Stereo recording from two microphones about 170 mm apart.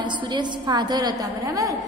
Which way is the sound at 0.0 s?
25° right (ahead or behind).